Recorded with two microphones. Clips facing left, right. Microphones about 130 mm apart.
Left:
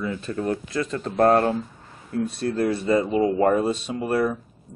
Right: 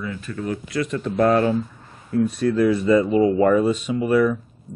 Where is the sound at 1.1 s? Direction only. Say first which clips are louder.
Even; 50° left (ahead or behind).